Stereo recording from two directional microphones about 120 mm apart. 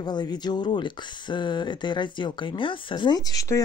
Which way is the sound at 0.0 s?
35° left (ahead or behind).